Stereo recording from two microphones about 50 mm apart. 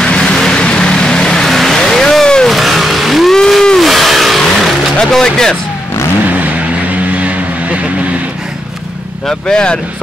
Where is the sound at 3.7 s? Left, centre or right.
Centre.